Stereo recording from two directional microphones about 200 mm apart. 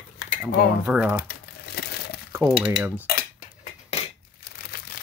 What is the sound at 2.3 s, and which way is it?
Speech, 5° right (ahead or behind).